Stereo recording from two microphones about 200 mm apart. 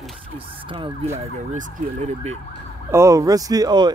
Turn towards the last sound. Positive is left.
turn(degrees=-20)  # may be behind; listen again after turning